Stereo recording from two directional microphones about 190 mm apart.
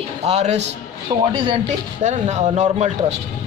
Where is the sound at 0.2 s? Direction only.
35° right (ahead or behind).